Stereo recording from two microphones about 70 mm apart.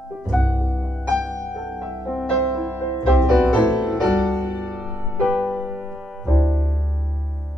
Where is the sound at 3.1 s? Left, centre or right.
Centre.